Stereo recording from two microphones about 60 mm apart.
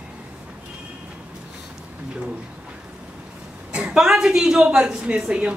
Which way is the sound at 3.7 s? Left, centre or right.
Centre.